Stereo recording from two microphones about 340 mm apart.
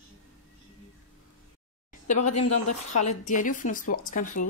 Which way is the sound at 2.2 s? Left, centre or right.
Left.